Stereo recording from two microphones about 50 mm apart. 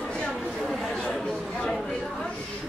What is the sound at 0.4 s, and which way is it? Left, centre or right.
Chatter, centre.